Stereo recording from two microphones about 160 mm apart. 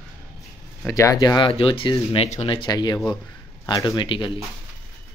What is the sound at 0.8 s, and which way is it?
Speech, 20° left (ahead or behind).